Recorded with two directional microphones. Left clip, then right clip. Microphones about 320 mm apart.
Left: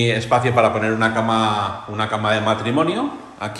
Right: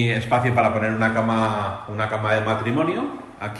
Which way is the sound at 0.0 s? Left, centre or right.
Centre.